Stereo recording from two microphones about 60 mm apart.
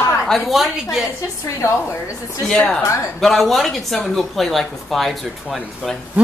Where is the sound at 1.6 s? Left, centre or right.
Left.